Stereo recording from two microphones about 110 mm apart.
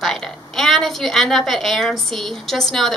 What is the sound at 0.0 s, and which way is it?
A woman's voice, 5° left (ahead or behind).